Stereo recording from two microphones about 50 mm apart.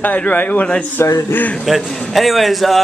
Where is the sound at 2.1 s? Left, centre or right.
Centre.